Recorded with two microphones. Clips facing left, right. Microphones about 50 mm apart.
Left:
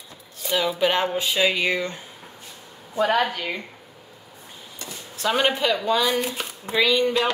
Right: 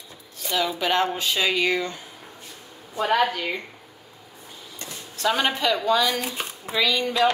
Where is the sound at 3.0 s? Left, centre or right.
Centre.